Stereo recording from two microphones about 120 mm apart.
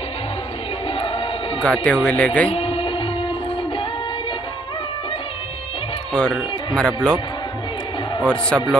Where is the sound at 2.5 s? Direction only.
50° left (ahead or behind).